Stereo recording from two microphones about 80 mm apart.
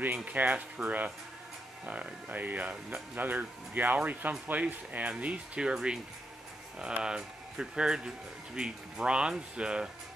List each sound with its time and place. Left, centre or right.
0.0 s speech: centre
7.0 s speech: centre